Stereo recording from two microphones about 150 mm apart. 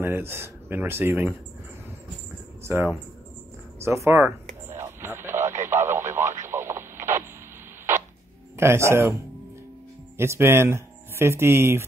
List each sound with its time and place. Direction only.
0.0 s speech: 15° right (ahead or behind)
2.6 s speech: 15° right (ahead or behind)
4.6 s radio: 15° right (ahead or behind)
8.5 s speech: 15° right (ahead or behind)
10.1 s speech: 15° right (ahead or behind)